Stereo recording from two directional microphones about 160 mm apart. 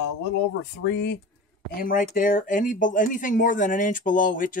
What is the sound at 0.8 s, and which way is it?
Speech, 90° left.